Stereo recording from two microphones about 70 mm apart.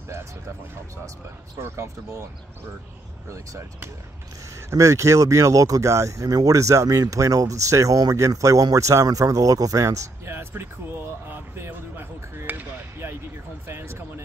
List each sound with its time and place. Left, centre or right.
1.6 s speech: right
4.6 s speech: right
10.2 s speech: right